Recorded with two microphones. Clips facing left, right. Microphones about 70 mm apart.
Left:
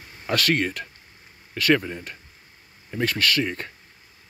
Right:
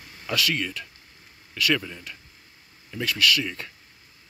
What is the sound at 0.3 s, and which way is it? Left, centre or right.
Speech, left.